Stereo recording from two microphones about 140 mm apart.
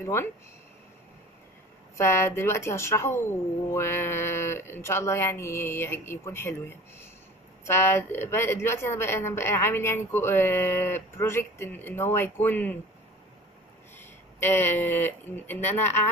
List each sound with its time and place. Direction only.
0.0 s speech: 20° left (ahead or behind)
2.0 s speech: 20° left (ahead or behind)
13.9 s speech: 15° left (ahead or behind)